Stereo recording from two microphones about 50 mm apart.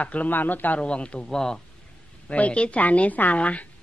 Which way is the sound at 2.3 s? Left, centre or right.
Left.